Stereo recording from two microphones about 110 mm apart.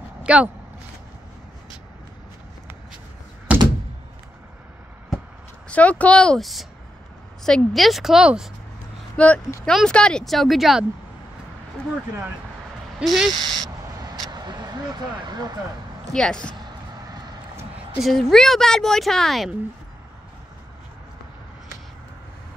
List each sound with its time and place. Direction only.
0.2 s a sound: 10° right (ahead or behind)
3.5 s thunk: 10° right (ahead or behind)
5.7 s a woman's voice: 10° left (ahead or behind); by 8.5 s 5° right (ahead or behind)
9.1 s speech: 10° left (ahead or behind)
13.0 s speech: centre (ahead or behind)
14.2 s vehicle: 40° right (ahead or behind)
16.1 s a woman's voice: 5° left (ahead or behind)
18.0 s speech: 5° left (ahead or behind)